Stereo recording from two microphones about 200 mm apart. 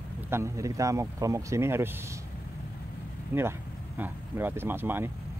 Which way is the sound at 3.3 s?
10° right (ahead or behind).